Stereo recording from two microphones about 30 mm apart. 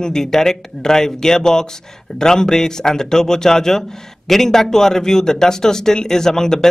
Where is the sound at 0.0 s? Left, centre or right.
Centre.